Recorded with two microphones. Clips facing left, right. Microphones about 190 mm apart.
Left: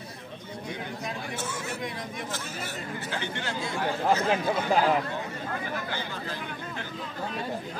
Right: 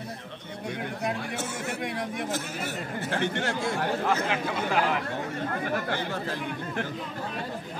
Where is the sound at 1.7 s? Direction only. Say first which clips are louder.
Right 3 dB; 65° right (ahead or behind).